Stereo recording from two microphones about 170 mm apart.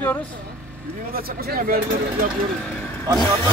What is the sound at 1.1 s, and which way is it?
Speech, 60° right (ahead or behind).